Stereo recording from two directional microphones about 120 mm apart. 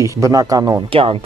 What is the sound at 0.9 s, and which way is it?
Speech, 50° right (ahead or behind).